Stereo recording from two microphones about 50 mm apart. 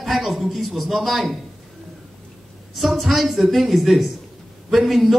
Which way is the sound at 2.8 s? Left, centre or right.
Centre.